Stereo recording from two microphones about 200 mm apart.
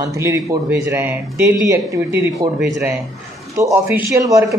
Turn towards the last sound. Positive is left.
turn(degrees=-15)  # may be behind; listen again after turning